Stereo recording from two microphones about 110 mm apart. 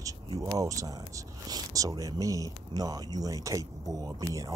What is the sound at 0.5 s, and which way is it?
Speech, 30° right (ahead or behind).